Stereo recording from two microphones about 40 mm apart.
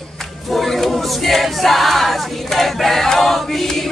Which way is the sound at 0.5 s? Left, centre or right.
Centre.